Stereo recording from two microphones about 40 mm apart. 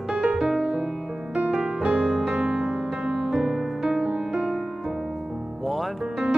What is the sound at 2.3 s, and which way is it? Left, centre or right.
Music, right.